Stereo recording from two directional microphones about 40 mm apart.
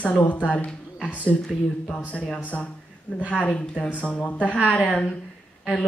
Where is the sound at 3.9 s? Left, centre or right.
Left.